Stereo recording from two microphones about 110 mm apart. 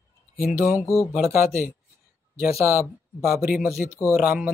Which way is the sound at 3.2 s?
Centre (ahead or behind).